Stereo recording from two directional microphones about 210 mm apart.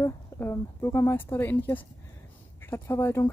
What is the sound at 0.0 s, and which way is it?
Speech, 10° left (ahead or behind).